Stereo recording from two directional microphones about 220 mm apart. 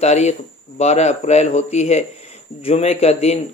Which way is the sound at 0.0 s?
30° left (ahead or behind).